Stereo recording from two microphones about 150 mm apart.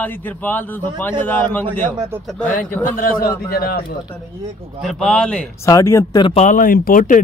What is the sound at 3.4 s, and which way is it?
Speech, 90° left.